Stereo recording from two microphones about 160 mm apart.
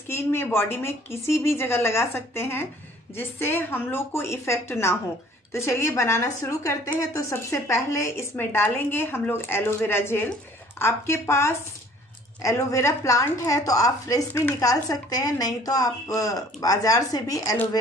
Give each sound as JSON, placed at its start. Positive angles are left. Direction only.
{"t": 0.1, "sound": "a woman's voice", "side_deg": 15}